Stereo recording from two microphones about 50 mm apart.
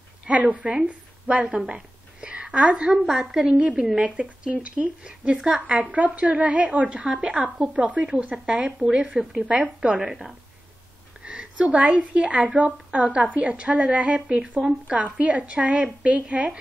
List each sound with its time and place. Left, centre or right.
0.3 s a woman's voice: right
1.7 s a sound: right
2.9 s a woman's voice: centre
11.2 s a woman's voice: right